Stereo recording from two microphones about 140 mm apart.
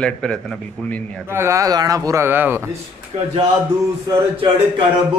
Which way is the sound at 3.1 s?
50° right (ahead or behind).